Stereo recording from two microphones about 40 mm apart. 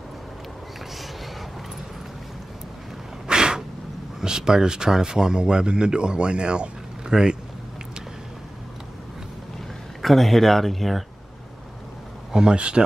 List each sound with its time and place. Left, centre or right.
3.3 s a sound: centre
4.2 s speech: centre
7.1 s speech: centre
10.0 s speech: centre
12.3 s speech: centre
12.5 s speech: right